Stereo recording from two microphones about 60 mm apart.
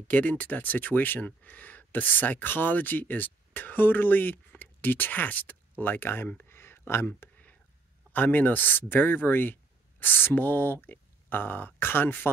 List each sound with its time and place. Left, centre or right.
0.1 s speech: left
6.4 s a sound: left
8.1 s speech: left